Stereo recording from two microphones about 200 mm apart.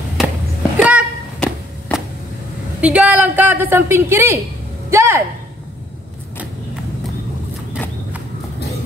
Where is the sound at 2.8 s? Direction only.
5° right (ahead or behind).